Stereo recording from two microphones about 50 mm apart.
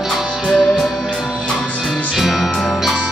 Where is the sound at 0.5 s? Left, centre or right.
Centre.